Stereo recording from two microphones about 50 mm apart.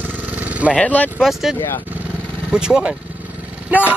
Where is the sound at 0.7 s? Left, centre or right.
Left.